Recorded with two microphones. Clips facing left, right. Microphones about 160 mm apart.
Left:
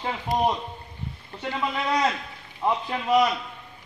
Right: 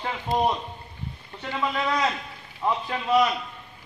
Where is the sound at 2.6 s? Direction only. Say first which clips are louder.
Left 1 dB; 20° left (ahead or behind).